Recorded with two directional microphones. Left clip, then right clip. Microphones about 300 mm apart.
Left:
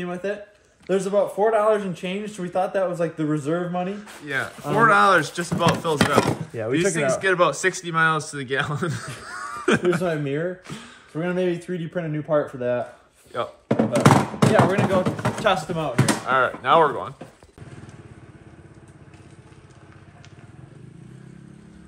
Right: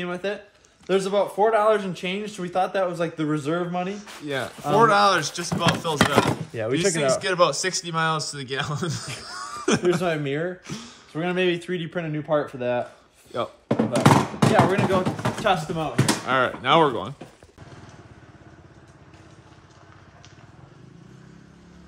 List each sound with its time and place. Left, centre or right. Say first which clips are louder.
0.0 s speech: even; centre
9.2 s a sound: left 3 dB; centre
10.0 s speech: even; centre
16.3 s speech: left 2 dB; right